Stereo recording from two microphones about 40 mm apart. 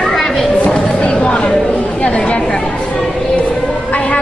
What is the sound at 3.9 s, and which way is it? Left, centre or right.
Music, left.